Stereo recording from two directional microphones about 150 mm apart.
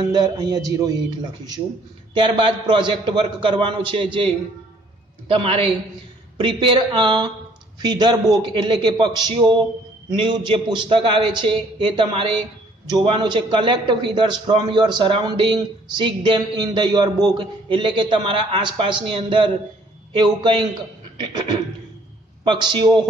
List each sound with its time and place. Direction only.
0.1 s a man's voice: 25° right (ahead or behind)
2.1 s a man's voice: 30° right (ahead or behind)
5.3 s a man's voice: 40° right (ahead or behind)
22.4 s a man's voice: 30° right (ahead or behind)